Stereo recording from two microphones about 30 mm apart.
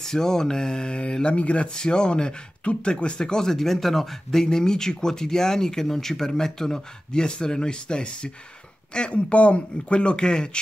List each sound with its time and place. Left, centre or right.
0.0 s speech: centre; by 1.7 s left
1.7 s speech: left
3.2 s speech: left
7.1 s speech: left
9.1 s speech: left